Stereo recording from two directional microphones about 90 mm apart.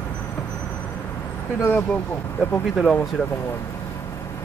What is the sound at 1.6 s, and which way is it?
Speech, 20° left (ahead or behind).